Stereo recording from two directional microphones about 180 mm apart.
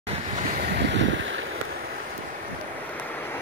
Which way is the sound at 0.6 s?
65° right (ahead or behind).